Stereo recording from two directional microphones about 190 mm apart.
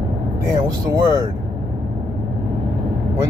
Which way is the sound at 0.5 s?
15° right (ahead or behind).